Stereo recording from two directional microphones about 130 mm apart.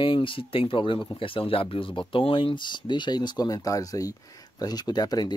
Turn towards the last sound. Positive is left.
turn(degrees=30)  # may be behind; listen again after turning